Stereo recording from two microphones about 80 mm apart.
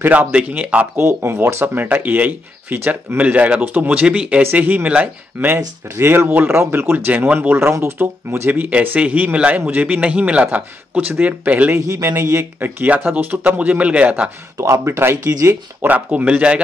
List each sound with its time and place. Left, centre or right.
0.0 s speech: right
0.9 s speech: right
11.8 s speech: right
12.5 s speech: right
14.6 s speech: right
15.9 s speech: centre